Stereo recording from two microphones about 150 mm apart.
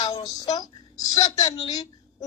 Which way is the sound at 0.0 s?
40° left (ahead or behind).